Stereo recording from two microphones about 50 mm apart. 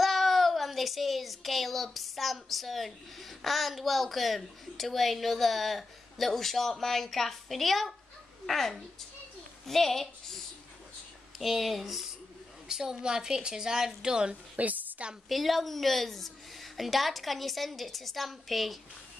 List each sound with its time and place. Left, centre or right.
0.0 s a child's voice: centre
14.6 s a sound: right
15.2 s a child's voice: centre